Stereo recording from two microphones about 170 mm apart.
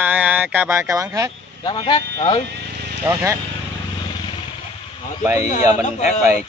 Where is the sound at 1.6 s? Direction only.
25° left (ahead or behind).